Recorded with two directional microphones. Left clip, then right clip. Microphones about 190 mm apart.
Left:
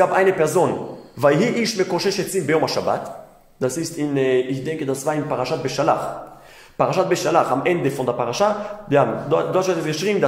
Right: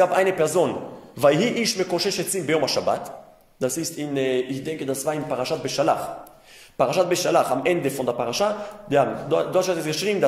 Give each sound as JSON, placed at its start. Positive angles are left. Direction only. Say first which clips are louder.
{"t": 0.0, "sound": "speech", "louder": "left 3 dB", "side_deg": -40}